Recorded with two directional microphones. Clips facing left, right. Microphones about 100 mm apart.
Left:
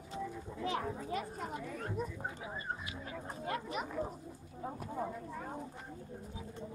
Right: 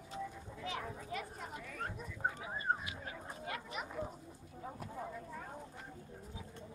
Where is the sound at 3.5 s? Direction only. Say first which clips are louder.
Left 6 dB; 40° left (ahead or behind).